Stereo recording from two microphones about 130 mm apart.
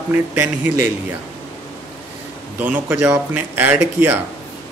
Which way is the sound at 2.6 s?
15° right (ahead or behind).